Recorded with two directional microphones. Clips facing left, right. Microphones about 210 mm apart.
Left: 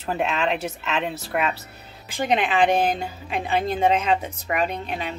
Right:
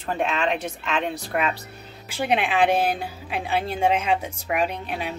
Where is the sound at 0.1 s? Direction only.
5° left (ahead or behind).